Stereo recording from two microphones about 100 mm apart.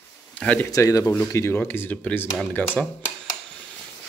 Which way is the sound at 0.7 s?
35° left (ahead or behind).